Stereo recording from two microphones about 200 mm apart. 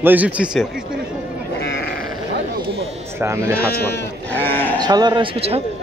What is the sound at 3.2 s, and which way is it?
Speech, 15° right (ahead or behind).